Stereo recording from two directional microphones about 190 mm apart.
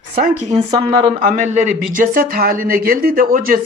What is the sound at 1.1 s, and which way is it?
Speech, 40° right (ahead or behind).